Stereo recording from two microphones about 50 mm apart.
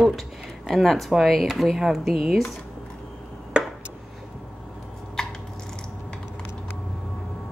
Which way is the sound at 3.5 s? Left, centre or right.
Right.